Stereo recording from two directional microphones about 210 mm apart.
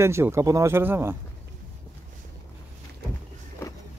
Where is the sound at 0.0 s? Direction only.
10° right (ahead or behind).